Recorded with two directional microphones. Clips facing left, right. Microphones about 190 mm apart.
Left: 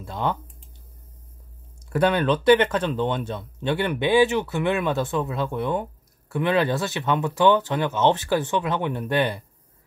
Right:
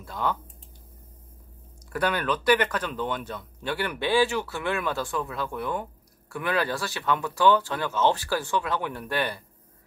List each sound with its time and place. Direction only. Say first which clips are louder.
0.0 s speech: left 3 dB; 25° left (ahead or behind)
1.9 s speech: left 6 dB; 25° left (ahead or behind)